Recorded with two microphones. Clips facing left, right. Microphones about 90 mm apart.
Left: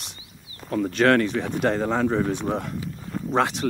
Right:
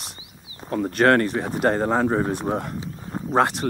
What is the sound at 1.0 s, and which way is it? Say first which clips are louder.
Speech: right 1 dB; 25° right (ahead or behind).